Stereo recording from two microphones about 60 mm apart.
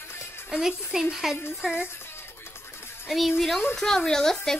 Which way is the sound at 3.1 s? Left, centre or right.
Centre.